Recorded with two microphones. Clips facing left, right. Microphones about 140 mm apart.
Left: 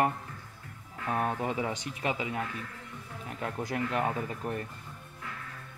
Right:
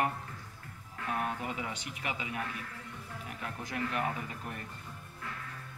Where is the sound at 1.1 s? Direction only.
25° left (ahead or behind).